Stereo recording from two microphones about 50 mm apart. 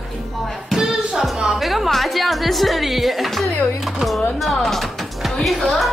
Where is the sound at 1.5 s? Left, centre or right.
Centre.